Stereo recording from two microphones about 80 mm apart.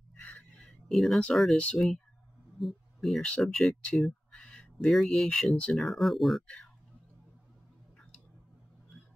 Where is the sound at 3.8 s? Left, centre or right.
Centre.